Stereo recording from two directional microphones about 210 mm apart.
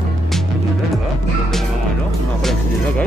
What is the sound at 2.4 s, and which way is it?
Music, centre (ahead or behind).